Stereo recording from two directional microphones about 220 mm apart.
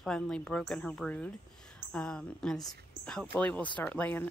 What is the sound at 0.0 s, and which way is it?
Speech, 5° left (ahead or behind).